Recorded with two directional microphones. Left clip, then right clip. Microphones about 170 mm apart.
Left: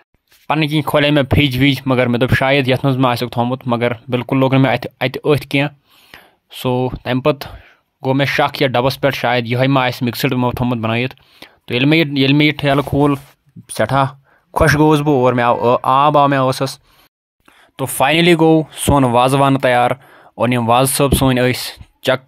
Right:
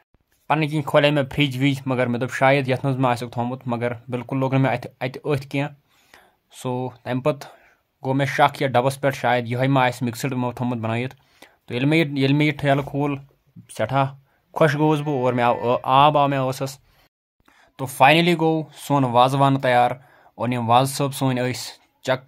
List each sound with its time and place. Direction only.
0.5 s speech: 35° left (ahead or behind)